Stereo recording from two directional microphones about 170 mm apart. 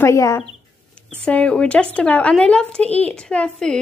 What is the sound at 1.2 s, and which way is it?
Speech, 5° left (ahead or behind).